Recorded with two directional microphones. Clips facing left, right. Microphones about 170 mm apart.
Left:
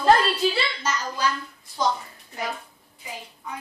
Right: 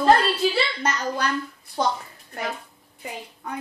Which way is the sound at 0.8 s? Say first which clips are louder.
Right 1 dB; 60° right (ahead or behind).